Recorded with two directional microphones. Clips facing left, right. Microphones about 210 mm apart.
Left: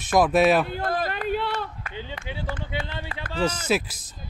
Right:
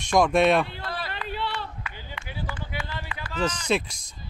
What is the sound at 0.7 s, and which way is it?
Run, 45° left (ahead or behind).